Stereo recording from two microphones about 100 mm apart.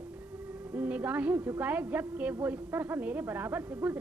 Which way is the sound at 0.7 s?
15° right (ahead or behind).